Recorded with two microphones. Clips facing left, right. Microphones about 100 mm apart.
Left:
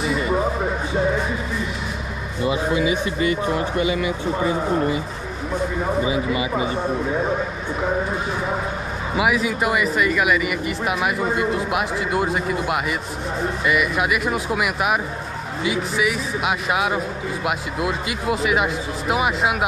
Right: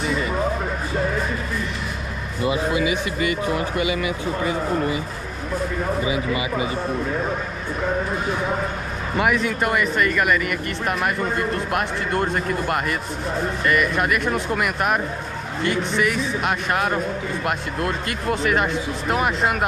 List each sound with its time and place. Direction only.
0.0 s a sound: 5° left (ahead or behind)
2.7 s a man's voice: 30° left (ahead or behind)
6.0 s speech: 30° left (ahead or behind)
9.1 s speech: 5° left (ahead or behind)